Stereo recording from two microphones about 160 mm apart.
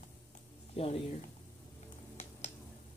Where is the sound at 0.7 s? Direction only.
40° left (ahead or behind).